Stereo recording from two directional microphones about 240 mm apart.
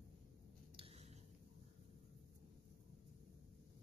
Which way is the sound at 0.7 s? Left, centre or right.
Right.